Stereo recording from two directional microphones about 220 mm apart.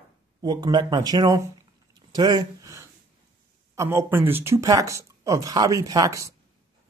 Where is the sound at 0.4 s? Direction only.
15° right (ahead or behind).